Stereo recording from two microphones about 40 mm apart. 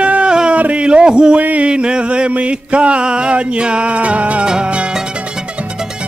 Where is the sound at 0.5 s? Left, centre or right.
Right.